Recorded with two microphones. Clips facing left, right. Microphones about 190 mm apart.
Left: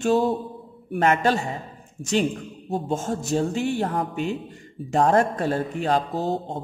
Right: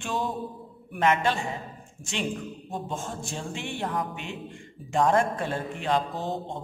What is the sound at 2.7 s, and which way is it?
Speech, 40° left (ahead or behind).